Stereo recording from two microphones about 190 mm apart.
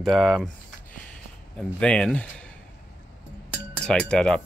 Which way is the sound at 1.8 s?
5° left (ahead or behind).